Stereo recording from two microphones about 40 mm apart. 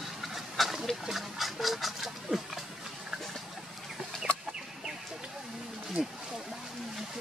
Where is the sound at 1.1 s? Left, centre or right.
Centre.